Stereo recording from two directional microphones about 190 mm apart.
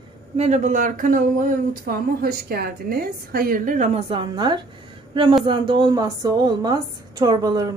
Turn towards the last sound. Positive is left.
turn(degrees=-20)  # may be behind; listen again after turning